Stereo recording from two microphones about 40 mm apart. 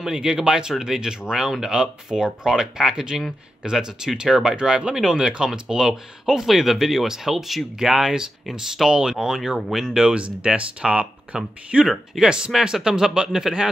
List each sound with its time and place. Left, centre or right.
0.0 s speech: centre
9.6 s speech: centre
9.8 s speech: centre
10.1 s speech: right
11.3 s speech: centre
11.7 s speech: right